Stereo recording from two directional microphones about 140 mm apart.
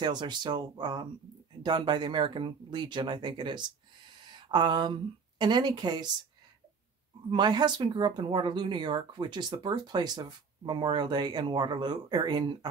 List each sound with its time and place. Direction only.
0.0 s speech: 30° right (ahead or behind)
7.2 s speech: 30° right (ahead or behind)